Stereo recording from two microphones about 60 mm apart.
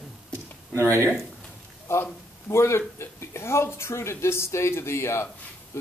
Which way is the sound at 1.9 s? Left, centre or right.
Left.